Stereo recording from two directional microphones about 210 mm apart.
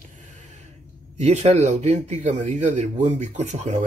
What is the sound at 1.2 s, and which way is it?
Speech, 35° right (ahead or behind).